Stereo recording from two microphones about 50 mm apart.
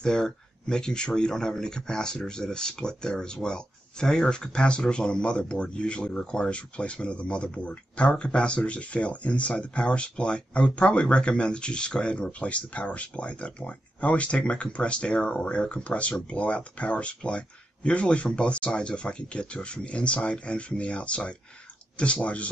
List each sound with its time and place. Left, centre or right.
0.0 s speech: centre